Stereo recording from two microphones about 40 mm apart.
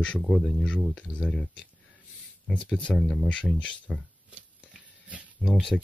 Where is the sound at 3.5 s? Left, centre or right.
Left.